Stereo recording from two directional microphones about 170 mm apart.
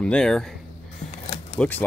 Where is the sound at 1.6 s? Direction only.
5° left (ahead or behind).